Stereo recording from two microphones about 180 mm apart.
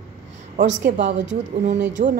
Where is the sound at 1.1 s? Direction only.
85° right.